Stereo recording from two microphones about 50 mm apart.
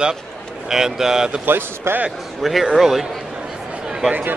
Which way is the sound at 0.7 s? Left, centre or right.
Centre.